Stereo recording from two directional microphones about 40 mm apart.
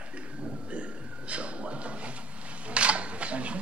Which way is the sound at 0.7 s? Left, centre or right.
Right.